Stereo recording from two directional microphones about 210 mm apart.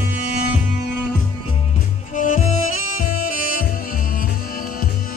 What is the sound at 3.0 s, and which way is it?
Saxophone, 40° left (ahead or behind).